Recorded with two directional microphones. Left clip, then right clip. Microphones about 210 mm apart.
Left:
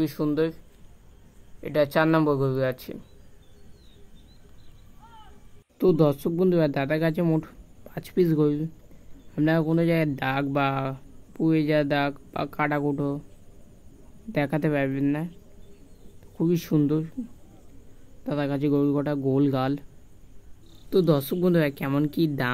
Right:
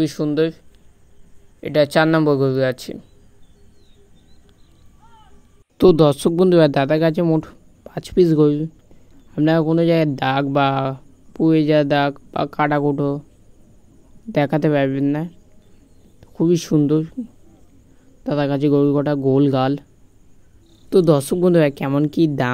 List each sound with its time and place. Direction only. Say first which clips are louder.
0.0 s speech: right 6 dB; 15° right (ahead or behind)
1.6 s speech: right 7 dB; 20° right (ahead or behind)
5.0 s music: even; centre (ahead or behind)
5.8 s speech: right 8 dB; 35° right (ahead or behind)
14.3 s speech: right 8 dB; 20° right (ahead or behind)
18.2 s speech: right 8 dB; 20° right (ahead or behind)
20.9 s speech: right 8 dB; 30° right (ahead or behind)